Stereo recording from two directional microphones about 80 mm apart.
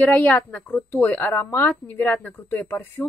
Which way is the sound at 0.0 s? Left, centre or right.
Left.